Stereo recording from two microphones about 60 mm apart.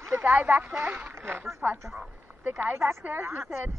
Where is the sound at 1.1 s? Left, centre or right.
Right.